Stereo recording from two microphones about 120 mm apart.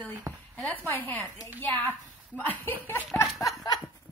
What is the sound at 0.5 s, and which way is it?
A woman's voice, 15° left (ahead or behind).